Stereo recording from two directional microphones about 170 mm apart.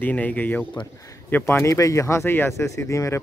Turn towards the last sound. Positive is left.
turn(degrees=20)  # may be behind; listen again after turning